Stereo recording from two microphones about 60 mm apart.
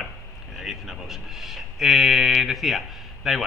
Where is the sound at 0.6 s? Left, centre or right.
Centre.